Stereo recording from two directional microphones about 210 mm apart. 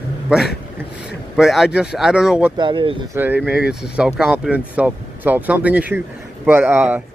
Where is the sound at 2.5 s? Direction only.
25° right (ahead or behind).